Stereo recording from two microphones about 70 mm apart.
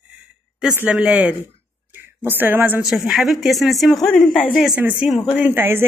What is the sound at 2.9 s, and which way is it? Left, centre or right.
Speech, centre.